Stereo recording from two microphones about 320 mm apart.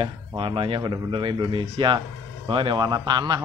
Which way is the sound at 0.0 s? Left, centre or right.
Centre.